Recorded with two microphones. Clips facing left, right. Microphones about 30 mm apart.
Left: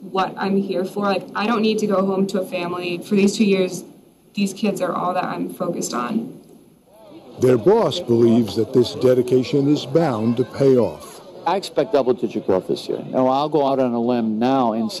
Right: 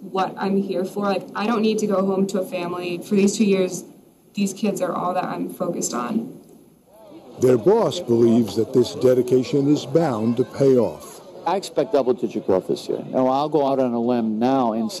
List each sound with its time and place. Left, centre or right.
0.1 s speech: left
7.3 s speech: left